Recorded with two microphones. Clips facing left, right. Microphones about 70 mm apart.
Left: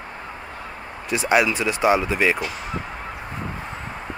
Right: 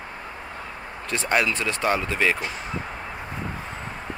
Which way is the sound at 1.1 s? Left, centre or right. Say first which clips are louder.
Left 4 dB; centre.